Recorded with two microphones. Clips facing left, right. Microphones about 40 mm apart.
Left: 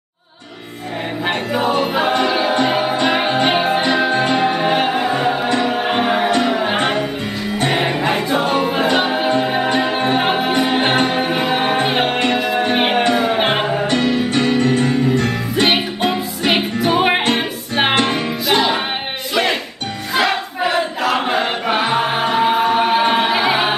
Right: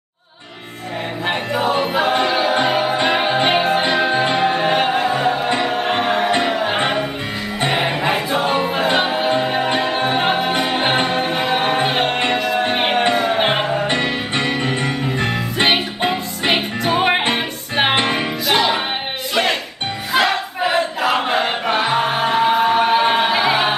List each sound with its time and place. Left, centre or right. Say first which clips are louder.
1.2 s music: left 1 dB; centre
2.1 s choir: even; centre
2.6 s music: left 1 dB; centre
5.7 s choir: left 1 dB; centre
6.4 s music: left 1 dB; centre
13.8 s music: left 3 dB; right
16.5 s music: left 3 dB; centre
17.9 s music: left 1 dB; right
18.5 s music: left 1 dB; centre
20.2 s choir: even; centre